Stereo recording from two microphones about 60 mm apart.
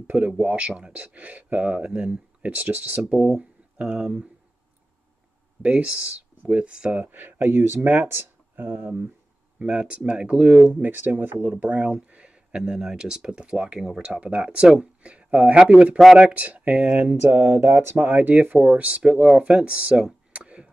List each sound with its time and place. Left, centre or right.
0.0 s speech: centre
5.6 s speech: centre
7.0 s speech: right
9.6 s speech: centre
10.8 s speech: right; by 17.0 s centre
17.3 s speech: right
20.3 s chop: centre